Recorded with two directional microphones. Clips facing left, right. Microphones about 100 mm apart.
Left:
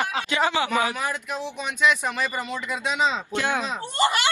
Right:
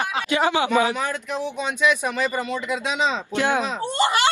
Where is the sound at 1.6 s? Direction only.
15° right (ahead or behind).